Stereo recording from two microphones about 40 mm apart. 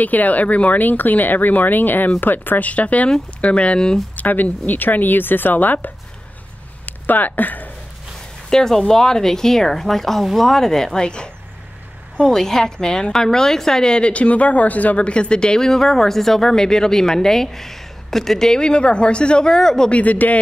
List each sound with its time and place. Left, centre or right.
0.0 s speech: left
2.7 s a woman's voice: left
4.2 s speech: left
6.9 s speech: left
8.5 s a woman's voice: centre; by 15.0 s left
15.0 s speech: left
19.5 s speech: centre
19.9 s speech: left